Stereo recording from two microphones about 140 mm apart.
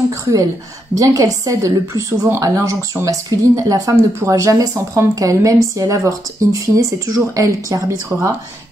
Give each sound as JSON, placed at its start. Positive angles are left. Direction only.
{"t": 0.9, "sound": "a woman's voice", "side_deg": -25}